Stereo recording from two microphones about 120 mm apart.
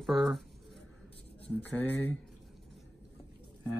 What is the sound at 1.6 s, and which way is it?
Speech, 15° left (ahead or behind).